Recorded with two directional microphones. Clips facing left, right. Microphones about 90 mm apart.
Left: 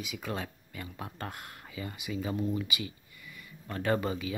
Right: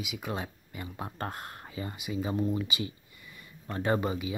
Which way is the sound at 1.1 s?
35° right (ahead or behind).